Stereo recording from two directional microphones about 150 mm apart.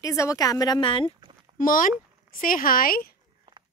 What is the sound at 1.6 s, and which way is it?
Speech, 65° left (ahead or behind).